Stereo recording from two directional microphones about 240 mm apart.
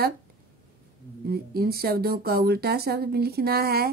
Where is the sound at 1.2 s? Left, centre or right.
Right.